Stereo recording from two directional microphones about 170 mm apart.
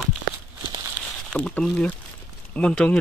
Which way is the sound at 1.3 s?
5° left (ahead or behind).